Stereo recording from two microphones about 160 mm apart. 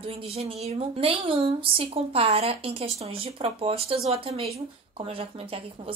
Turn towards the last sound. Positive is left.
turn(degrees=-35)  # may be behind; listen again after turning